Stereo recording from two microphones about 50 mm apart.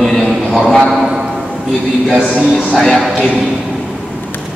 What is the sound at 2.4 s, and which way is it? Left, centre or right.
Speech, centre.